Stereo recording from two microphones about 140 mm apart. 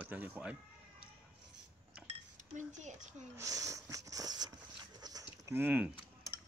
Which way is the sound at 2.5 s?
60° right (ahead or behind).